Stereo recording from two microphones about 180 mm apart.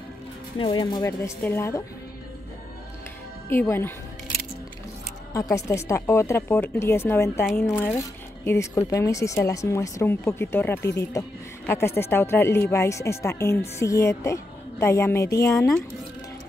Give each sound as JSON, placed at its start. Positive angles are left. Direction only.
{"t": 0.6, "sound": "speech", "side_deg": 25}
{"t": 3.4, "sound": "speech", "side_deg": 15}
{"t": 5.3, "sound": "speech", "side_deg": 15}
{"t": 7.4, "sound": "speech", "side_deg": 0}
{"t": 7.7, "sound": "speech", "side_deg": 10}